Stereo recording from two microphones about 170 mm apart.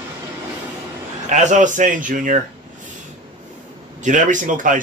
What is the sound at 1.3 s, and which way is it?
Speech, 45° right (ahead or behind).